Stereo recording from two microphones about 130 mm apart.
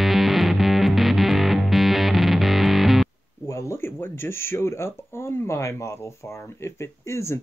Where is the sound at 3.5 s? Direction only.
20° left (ahead or behind).